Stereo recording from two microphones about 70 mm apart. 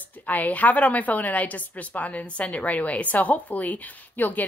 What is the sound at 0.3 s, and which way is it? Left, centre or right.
A woman's voice, left.